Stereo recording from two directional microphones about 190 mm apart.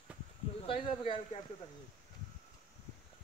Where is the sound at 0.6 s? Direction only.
25° left (ahead or behind).